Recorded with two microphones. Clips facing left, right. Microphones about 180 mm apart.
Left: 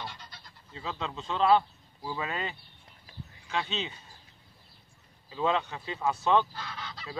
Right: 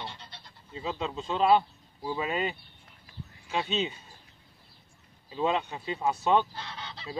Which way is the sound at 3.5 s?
20° right (ahead or behind).